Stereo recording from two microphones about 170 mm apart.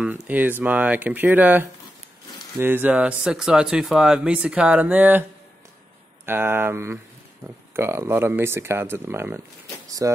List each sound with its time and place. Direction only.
0.0 s speech: 5° right (ahead or behind)
6.2 s speech: 15° right (ahead or behind)
9.8 s a sound: 20° right (ahead or behind)